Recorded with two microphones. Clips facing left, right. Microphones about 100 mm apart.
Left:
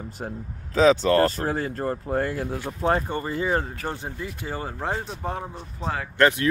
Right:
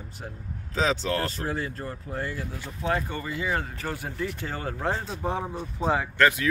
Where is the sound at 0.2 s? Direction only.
45° left (ahead or behind).